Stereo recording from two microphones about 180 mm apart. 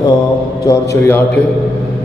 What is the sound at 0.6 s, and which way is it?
Speech, 15° left (ahead or behind).